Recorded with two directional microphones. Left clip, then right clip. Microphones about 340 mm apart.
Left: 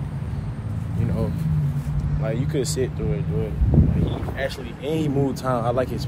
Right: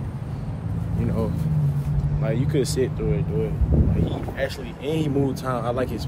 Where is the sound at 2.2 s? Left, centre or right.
Centre.